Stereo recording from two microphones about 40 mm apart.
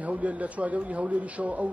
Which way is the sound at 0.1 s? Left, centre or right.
Right.